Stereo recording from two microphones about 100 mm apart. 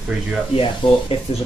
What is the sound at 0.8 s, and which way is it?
Speech, 50° left (ahead or behind).